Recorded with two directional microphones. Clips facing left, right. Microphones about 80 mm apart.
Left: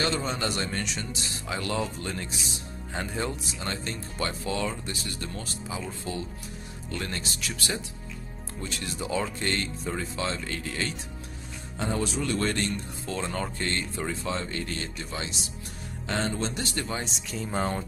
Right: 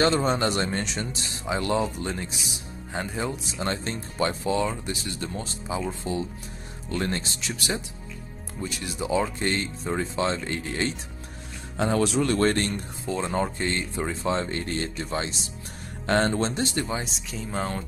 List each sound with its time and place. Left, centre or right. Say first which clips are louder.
0.0 s speech: right 6 dB; right; by 3.3 s centre
3.5 s speech: right 5 dB; right
6.9 s speech: right 6 dB; right
11.7 s speech: right 6 dB; right
12.2 s speech: right 5 dB; right
12.7 s speech: right 3 dB; centre; by 15.3 s right
16.1 s speech: right 7 dB; right
16.4 s speech: right 5 dB; right
16.8 s speech: right 2 dB; centre